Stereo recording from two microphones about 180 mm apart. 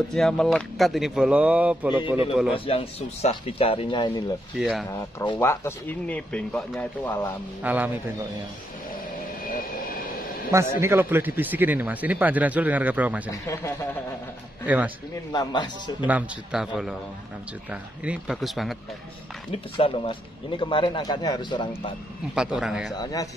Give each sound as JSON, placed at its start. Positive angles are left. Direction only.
{"t": 0.1, "sound": "speech", "side_deg": 5}
{"t": 2.5, "sound": "speech", "side_deg": 30}
{"t": 4.6, "sound": "speech", "side_deg": 0}
{"t": 4.9, "sound": "speech", "side_deg": 25}
{"t": 5.4, "sound": "speech", "side_deg": 15}
{"t": 7.6, "sound": "speech", "side_deg": -10}
{"t": 10.8, "sound": "speech", "side_deg": -15}
{"t": 13.3, "sound": "speech", "side_deg": 15}
{"t": 15.3, "sound": "speech", "side_deg": 25}
{"t": 16.1, "sound": "speech", "side_deg": -5}
{"t": 19.5, "sound": "speech", "side_deg": 30}
{"t": 22.3, "sound": "speech", "side_deg": -5}